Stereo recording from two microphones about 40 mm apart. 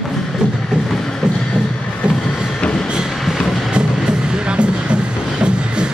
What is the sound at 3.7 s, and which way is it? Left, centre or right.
Music, right.